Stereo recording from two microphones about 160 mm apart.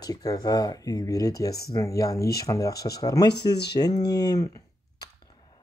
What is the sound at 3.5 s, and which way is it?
Speech, 90° left.